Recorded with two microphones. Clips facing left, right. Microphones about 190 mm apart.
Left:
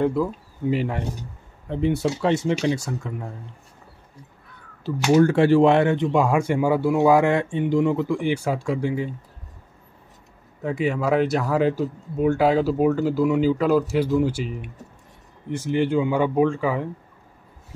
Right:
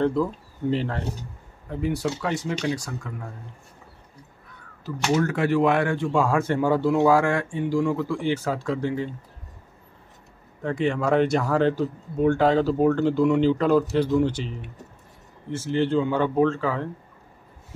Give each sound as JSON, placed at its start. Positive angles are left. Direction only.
{"t": 0.0, "sound": "speech", "side_deg": 5}
{"t": 1.7, "sound": "speech", "side_deg": 25}
{"t": 5.1, "sound": "speech", "side_deg": 30}
{"t": 10.6, "sound": "speech", "side_deg": 5}